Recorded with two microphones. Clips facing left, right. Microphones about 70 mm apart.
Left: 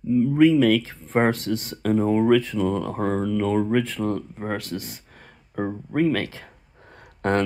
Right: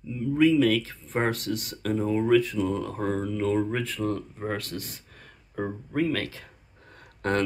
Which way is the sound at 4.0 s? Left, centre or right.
Left.